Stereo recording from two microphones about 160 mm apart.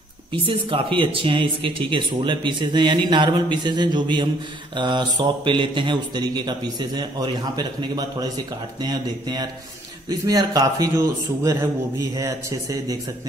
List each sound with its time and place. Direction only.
0.5 s speech: 35° right (ahead or behind)